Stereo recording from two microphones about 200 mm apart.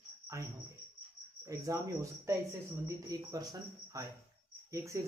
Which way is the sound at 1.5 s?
15° right (ahead or behind).